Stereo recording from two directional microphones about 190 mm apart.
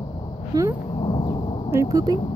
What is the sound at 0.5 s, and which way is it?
Speech, 20° right (ahead or behind).